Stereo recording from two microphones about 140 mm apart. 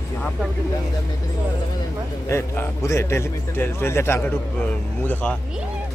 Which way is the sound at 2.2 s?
20° left (ahead or behind).